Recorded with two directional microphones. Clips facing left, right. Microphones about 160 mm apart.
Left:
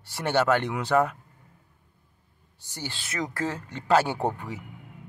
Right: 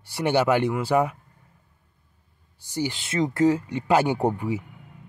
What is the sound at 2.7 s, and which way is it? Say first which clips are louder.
Speech: right 10 dB; 15° right (ahead or behind).